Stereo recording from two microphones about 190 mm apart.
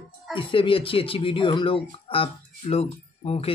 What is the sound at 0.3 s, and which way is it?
A man's voice, 25° left (ahead or behind).